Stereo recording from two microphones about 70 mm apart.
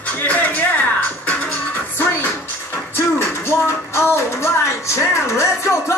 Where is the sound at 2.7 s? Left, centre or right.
Left.